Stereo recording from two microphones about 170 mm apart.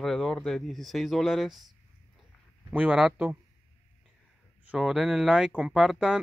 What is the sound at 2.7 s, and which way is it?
Speech, 10° right (ahead or behind).